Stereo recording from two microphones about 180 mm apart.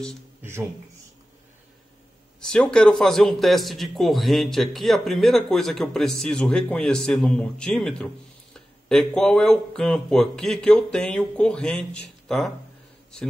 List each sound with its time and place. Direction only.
0.4 s speech: 15° right (ahead or behind)
2.5 s a man's voice: 5° left (ahead or behind)